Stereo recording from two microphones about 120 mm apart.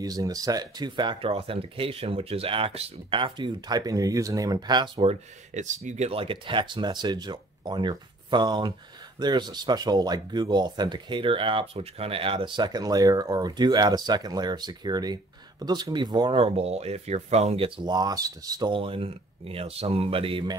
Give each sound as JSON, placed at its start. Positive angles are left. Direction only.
{"t": 0.0, "sound": "speech", "side_deg": -30}
{"t": 5.0, "sound": "speech", "side_deg": -80}
{"t": 18.7, "sound": "speech", "side_deg": -45}